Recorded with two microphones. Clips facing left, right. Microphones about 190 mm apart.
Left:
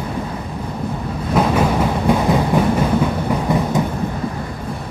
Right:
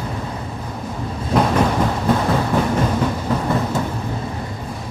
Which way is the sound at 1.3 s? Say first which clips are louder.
Left 1 dB; 5° left (ahead or behind).